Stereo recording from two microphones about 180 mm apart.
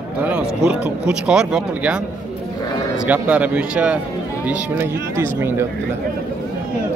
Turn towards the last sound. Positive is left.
turn(degrees=-15)  # may be behind; listen again after turning